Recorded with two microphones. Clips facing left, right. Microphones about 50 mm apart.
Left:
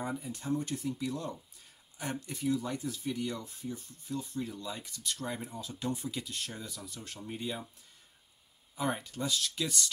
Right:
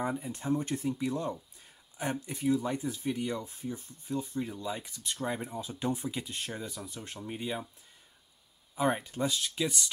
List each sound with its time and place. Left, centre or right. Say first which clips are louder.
0.2 s speech: right 3 dB; right
8.7 s speech: right 5 dB; right